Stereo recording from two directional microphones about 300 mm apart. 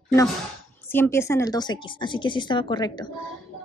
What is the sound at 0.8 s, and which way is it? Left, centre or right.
Speech, centre.